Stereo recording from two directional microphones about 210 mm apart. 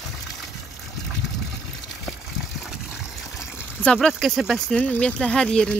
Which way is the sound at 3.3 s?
10° left (ahead or behind).